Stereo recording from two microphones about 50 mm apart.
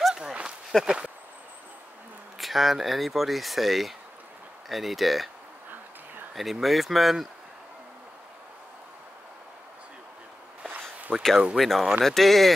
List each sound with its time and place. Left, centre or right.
0.1 s a sound: centre
0.7 s speech: centre
2.3 s speech: centre
6.3 s speech: centre
11.1 s speech: centre